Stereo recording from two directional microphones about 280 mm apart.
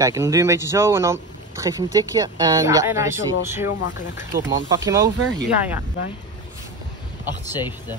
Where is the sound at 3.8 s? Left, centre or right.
Left.